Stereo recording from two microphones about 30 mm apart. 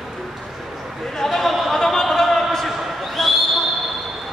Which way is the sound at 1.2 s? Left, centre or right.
Centre.